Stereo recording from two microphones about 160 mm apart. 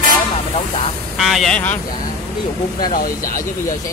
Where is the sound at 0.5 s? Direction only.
35° left (ahead or behind).